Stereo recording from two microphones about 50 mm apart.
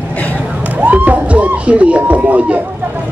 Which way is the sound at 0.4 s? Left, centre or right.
Right.